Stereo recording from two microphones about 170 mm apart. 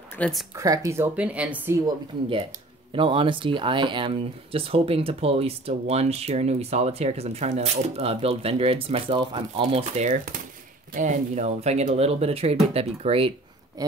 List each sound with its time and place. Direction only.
0.2 s speech: centre (ahead or behind)
0.6 s speech: 15° right (ahead or behind)
2.9 s speech: 30° right (ahead or behind)
13.8 s a sound: 20° right (ahead or behind)